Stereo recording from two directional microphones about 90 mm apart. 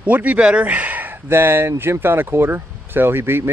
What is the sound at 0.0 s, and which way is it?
Speech, 15° right (ahead or behind).